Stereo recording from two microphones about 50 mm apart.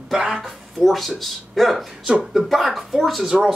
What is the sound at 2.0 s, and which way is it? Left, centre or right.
Speech, centre.